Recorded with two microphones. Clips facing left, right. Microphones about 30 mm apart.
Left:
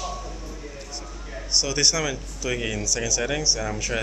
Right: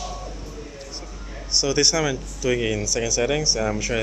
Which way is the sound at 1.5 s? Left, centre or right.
Centre.